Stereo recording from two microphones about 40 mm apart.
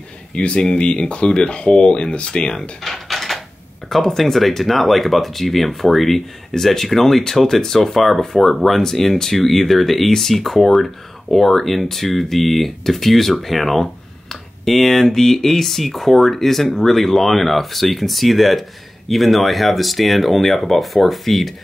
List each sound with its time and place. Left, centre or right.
0.3 s speech: left
2.8 s a sound: centre
3.9 s speech: centre